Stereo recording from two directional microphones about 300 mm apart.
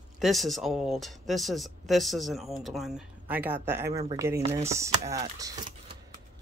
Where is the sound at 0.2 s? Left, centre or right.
Centre.